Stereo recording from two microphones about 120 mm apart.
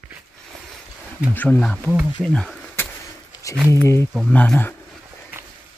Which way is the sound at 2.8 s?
20° left (ahead or behind).